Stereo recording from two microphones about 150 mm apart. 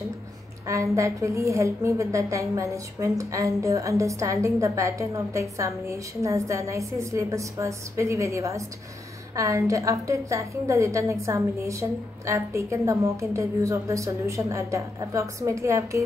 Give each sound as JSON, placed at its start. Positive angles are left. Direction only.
{"t": 0.7, "sound": "a woman's voice", "side_deg": -20}